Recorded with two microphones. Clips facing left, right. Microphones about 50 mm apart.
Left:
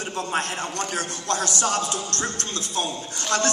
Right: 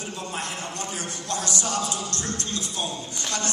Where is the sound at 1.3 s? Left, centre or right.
Left.